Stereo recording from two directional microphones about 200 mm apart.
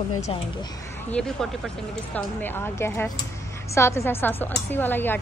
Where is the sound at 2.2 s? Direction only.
10° left (ahead or behind).